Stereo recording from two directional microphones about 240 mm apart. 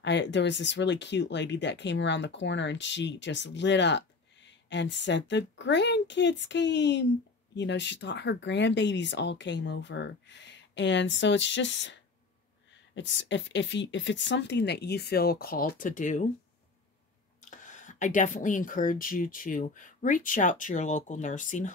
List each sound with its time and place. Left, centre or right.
0.0 s speech: left
17.4 s speech: left